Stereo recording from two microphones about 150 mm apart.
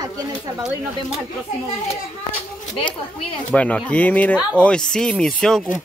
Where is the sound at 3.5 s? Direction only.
5° left (ahead or behind).